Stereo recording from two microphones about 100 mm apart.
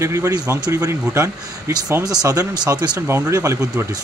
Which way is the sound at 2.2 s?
40° right (ahead or behind).